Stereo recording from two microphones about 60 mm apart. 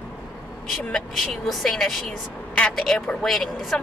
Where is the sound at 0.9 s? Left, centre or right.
Centre.